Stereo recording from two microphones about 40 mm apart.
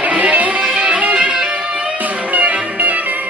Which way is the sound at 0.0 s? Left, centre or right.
Right.